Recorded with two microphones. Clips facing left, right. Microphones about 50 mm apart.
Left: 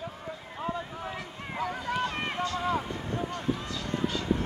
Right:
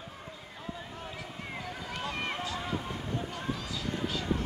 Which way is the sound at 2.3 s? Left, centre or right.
Centre.